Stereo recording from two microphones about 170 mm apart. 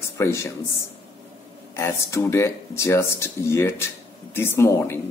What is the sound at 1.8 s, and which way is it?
Speech, 15° left (ahead or behind).